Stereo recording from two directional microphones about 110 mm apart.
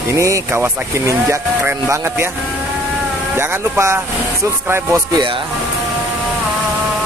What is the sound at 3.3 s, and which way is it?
Speech, 20° right (ahead or behind).